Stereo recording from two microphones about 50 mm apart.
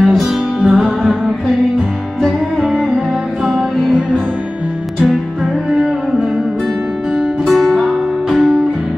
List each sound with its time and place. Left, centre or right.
0.0 s music: centre
0.7 s music: centre
5.7 s music: centre
7.4 s music: centre
8.3 s music: centre